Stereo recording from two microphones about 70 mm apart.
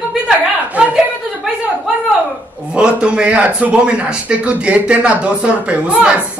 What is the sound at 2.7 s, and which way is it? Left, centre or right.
A man's voice, centre.